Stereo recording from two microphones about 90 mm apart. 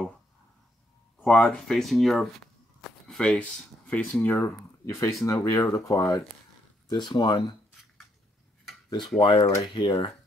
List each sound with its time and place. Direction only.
1.2 s speech: 10° left (ahead or behind)
4.8 s speech: 35° left (ahead or behind)
6.9 s speech: 55° left (ahead or behind)
9.2 s speech: 80° left
9.8 s speech: 55° left (ahead or behind)